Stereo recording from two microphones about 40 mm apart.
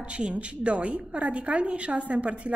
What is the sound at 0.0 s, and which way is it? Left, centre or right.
A woman's voice, right.